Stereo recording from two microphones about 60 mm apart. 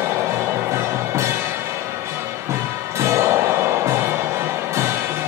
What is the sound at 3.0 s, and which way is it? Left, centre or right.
Music, right.